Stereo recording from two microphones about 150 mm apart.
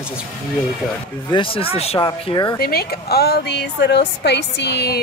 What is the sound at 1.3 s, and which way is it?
Speech, 35° left (ahead or behind).